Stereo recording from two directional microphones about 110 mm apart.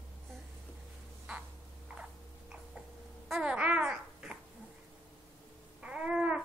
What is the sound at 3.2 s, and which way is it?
Babbling, 5° right (ahead or behind).